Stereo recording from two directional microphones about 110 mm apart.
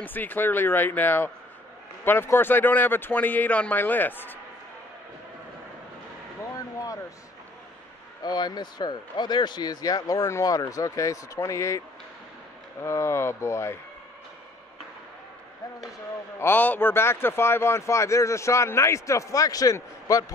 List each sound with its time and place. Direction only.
0.0 s a man's voice: 15° left (ahead or behind)
6.5 s a sound: 30° left (ahead or behind)
8.2 s speech: 40° left (ahead or behind)
12.8 s speech: 25° left (ahead or behind)
16.3 s speech: 20° left (ahead or behind)